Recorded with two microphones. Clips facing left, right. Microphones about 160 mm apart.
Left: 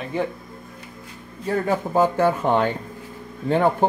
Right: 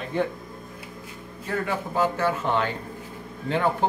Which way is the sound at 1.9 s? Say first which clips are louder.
Left 5 dB; 50° left (ahead or behind).